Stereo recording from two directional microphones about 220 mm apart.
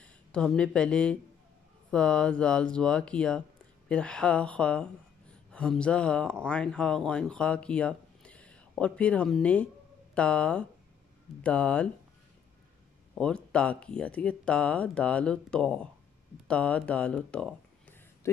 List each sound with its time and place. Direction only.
0.0 s speech: 5° left (ahead or behind)
13.1 s speech: 5° left (ahead or behind)